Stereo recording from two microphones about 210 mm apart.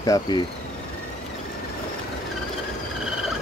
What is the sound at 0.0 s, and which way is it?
Speech, 15° left (ahead or behind).